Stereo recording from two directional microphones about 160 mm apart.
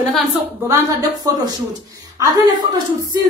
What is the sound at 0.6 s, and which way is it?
Speech, 20° right (ahead or behind).